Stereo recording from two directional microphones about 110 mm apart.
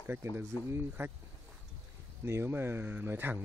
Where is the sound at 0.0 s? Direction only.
20° right (ahead or behind).